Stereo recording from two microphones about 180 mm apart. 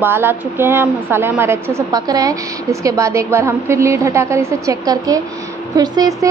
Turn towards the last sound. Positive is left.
turn(degrees=-20)  # may be behind; listen again after turning